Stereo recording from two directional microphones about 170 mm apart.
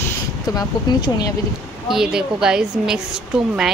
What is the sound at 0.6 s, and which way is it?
Speech, 25° left (ahead or behind).